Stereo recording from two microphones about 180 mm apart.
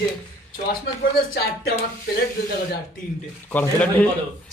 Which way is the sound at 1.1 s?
60° left (ahead or behind).